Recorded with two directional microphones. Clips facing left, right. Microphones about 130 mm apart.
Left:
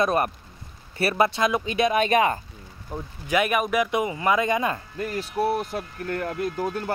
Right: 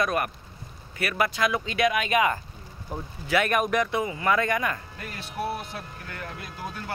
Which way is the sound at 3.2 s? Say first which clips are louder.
Left 1 dB; 15° left (ahead or behind).